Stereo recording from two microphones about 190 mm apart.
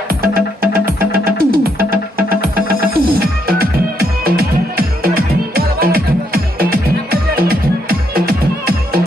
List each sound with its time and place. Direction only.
0.1 s music: 50° right (ahead or behind)